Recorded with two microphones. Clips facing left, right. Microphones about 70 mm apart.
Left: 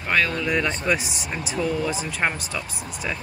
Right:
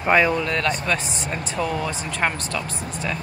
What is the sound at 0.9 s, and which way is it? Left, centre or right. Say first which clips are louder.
Speech: even; centre.